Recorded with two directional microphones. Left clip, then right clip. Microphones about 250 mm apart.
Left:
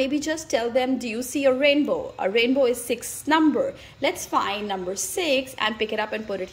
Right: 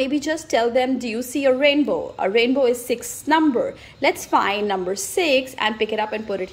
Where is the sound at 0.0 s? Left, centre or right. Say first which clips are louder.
Right 2 dB; centre.